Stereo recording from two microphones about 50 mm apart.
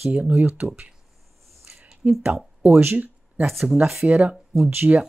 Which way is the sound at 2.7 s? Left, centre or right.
Right.